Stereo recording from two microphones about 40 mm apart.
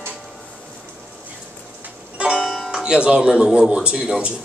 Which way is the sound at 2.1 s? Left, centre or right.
Right.